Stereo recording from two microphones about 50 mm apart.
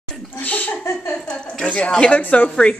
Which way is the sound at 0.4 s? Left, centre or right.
Left.